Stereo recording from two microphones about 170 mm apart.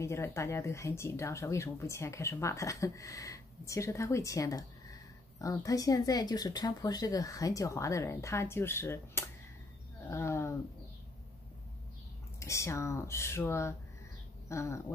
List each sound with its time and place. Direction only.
0.0 s speech: 15° left (ahead or behind)
12.4 s speech: 15° left (ahead or behind)